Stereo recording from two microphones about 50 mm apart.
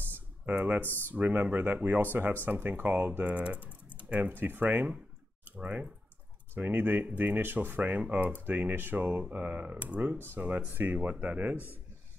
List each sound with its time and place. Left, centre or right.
0.5 s speech: right
0.8 s speech: left
1.1 s speech: right
6.5 s speech: right
9.3 s speech: right
10.1 s speech: right
10.7 s speech: right